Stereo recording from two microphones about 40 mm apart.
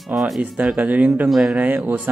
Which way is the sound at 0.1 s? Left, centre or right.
Centre.